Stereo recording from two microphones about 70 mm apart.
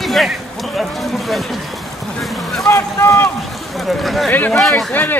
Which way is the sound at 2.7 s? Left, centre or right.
Left.